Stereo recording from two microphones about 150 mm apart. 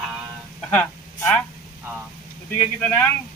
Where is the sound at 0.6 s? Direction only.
10° left (ahead or behind).